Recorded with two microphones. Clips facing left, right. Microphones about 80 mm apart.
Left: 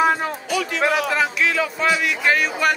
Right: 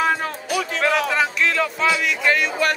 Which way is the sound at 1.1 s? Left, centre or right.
Centre.